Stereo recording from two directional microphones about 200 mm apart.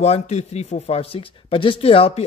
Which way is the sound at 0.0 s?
35° left (ahead or behind).